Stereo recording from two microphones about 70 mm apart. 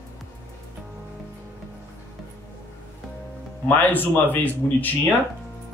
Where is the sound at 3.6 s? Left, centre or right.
Left.